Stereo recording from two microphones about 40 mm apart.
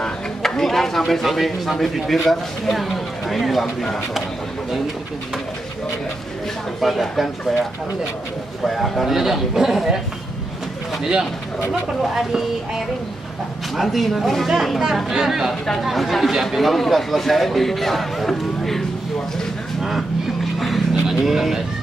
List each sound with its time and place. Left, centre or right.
0.0 s speech: centre
6.8 s a man's voice: centre
8.6 s a man's voice: centre
12.2 s a man's voice: centre
20.5 s a sound: centre
20.9 s vehicle: centre